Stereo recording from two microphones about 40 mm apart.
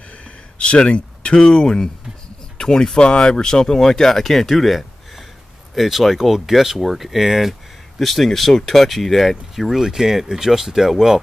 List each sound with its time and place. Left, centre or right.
0.2 s speech: left; by 7.5 s centre
8.0 s speech: centre
9.8 s speech: centre